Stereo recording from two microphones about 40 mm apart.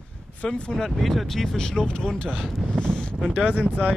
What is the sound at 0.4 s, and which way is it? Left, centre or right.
Speech, left.